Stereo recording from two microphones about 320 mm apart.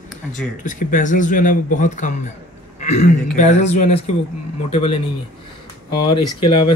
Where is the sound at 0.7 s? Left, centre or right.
Left.